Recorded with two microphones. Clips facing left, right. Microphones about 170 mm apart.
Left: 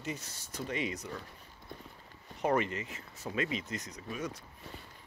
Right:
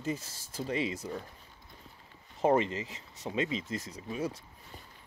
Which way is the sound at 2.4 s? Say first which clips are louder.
Right 4 dB; 25° right (ahead or behind).